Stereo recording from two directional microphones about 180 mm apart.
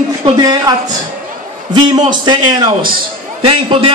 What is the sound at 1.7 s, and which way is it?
A man's voice, 25° right (ahead or behind).